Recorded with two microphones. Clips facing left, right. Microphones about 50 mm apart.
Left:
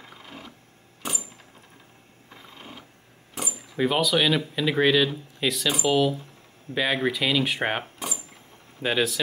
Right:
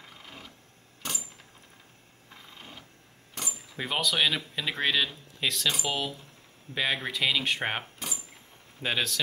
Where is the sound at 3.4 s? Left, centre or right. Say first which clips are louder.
Left 5 dB; centre.